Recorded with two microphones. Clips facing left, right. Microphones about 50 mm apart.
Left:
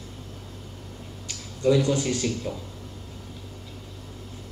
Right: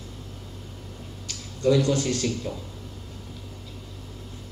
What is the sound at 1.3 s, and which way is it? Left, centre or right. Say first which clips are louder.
Speech: even; centre.